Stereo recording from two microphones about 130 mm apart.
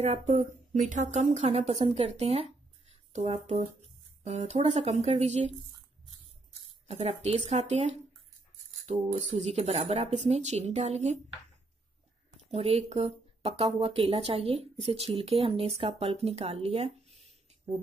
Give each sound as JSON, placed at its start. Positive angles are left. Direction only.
{"t": 0.0, "sound": "a woman's voice", "side_deg": -60}
{"t": 6.9, "sound": "speech", "side_deg": -55}
{"t": 12.4, "sound": "speech", "side_deg": -50}